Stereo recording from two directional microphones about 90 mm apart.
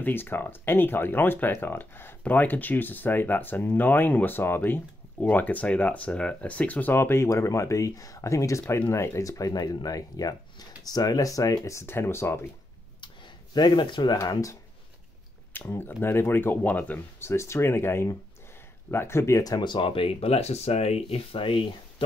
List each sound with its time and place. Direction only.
0.0 s speech: 25° left (ahead or behind)
11.8 s speech: 25° left (ahead or behind)
13.0 s a sound: 55° left (ahead or behind)
14.1 s speech: 40° left (ahead or behind)
15.5 s speech: 20° left (ahead or behind); by 22.0 s 80° left